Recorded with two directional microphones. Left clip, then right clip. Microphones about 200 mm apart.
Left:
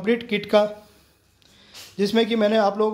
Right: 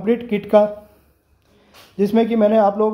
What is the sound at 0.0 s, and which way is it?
Speech, centre (ahead or behind).